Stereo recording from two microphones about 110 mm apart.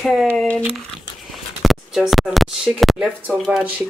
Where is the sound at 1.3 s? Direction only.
Centre (ahead or behind).